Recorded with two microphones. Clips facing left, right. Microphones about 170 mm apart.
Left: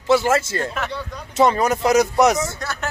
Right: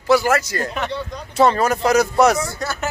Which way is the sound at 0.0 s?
25° left (ahead or behind).